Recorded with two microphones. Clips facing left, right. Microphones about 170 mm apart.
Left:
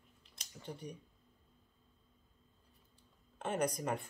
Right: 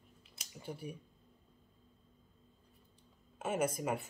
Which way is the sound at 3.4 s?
5° right (ahead or behind).